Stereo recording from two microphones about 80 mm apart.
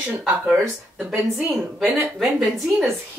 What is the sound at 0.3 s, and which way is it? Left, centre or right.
Speech, centre.